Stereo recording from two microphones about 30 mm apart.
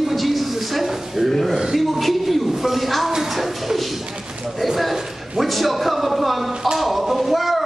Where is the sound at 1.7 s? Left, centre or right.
Centre.